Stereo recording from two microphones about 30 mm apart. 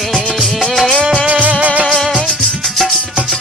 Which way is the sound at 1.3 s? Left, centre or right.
Right.